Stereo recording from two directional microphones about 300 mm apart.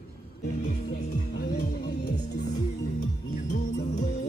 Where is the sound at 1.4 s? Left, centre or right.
Left.